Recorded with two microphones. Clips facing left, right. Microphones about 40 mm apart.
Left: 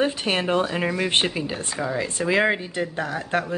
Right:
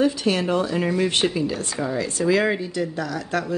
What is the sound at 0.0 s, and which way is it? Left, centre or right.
Speech, left.